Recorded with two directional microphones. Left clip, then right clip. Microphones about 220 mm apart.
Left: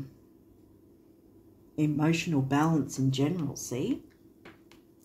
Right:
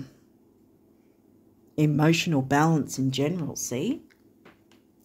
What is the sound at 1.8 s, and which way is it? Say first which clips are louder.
Speech: right 5 dB; 55° right (ahead or behind).